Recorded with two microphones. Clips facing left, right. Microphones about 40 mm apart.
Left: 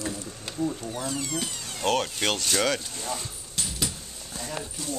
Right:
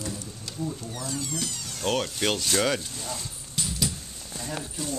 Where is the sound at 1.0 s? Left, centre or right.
Left.